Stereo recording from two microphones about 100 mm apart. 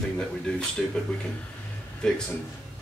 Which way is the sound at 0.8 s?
5° left (ahead or behind).